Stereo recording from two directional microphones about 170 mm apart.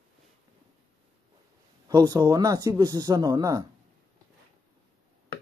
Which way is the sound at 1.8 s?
20° right (ahead or behind).